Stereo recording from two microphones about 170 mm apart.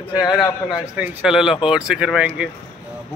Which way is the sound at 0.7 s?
5° right (ahead or behind).